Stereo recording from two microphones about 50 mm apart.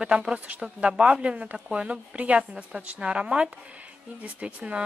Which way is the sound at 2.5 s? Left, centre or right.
Centre.